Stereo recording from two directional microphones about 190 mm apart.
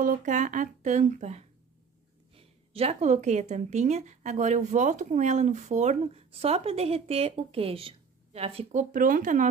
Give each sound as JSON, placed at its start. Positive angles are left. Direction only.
{"t": 0.0, "sound": "speech", "side_deg": -45}
{"t": 8.9, "sound": "speech", "side_deg": -45}